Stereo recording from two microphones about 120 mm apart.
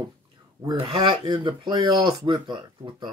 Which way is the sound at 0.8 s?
45° right (ahead or behind).